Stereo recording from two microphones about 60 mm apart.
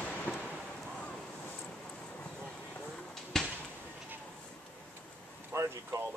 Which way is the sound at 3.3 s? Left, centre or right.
Centre.